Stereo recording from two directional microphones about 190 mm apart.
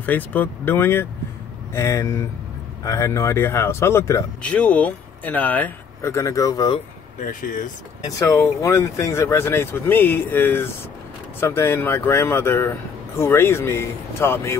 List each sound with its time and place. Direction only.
0.0 s speech: 10° left (ahead or behind)
7.2 s speech: 45° left (ahead or behind)
8.2 s speech: 15° left (ahead or behind)